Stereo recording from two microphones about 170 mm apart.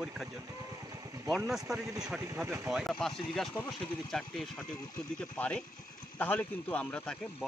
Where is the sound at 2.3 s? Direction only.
15° right (ahead or behind).